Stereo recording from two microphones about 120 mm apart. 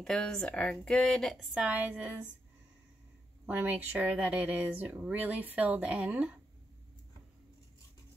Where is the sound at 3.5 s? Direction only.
15° right (ahead or behind).